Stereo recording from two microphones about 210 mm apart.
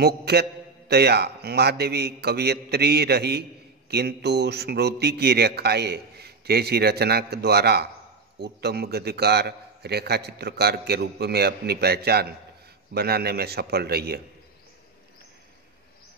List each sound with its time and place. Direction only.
0.0 s a man's voice: 50° right (ahead or behind)